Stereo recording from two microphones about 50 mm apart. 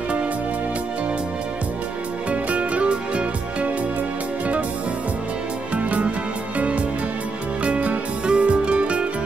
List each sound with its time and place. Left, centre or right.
2.5 s music: right
5.8 s music: right
7.6 s music: right